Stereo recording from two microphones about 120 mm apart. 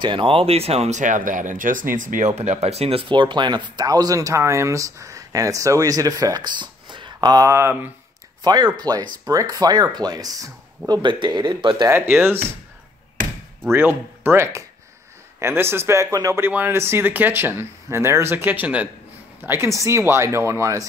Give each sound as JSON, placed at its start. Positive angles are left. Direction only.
{"t": 0.0, "sound": "speech", "side_deg": -45}
{"t": 8.8, "sound": "speech", "side_deg": -35}
{"t": 11.9, "sound": "speech", "side_deg": -20}
{"t": 13.7, "sound": "speech", "side_deg": -20}